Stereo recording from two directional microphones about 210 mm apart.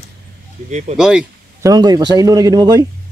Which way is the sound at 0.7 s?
35° right (ahead or behind).